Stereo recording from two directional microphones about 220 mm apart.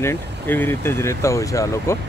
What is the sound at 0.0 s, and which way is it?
Speech, 10° left (ahead or behind).